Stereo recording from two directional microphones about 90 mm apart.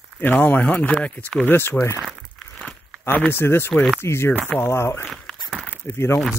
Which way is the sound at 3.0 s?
20° left (ahead or behind).